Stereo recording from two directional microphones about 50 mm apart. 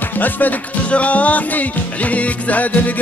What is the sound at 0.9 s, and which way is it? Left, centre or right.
Music, left.